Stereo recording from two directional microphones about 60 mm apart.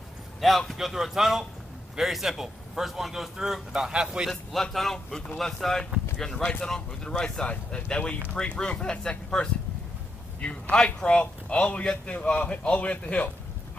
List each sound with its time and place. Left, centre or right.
0.4 s a man's voice: centre
4.3 s a man's voice: centre
10.4 s a man's voice: centre